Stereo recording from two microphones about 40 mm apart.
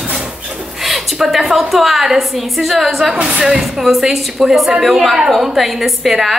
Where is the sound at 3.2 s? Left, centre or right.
Right.